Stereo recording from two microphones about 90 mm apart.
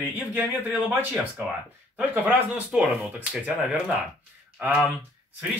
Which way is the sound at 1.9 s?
20° right (ahead or behind).